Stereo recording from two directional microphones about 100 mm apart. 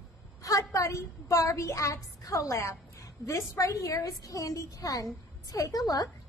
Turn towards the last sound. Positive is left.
turn(degrees=40)  # may be behind; listen again after turning